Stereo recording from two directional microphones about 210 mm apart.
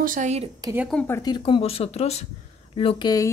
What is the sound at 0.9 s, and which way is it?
Speech, 10° left (ahead or behind).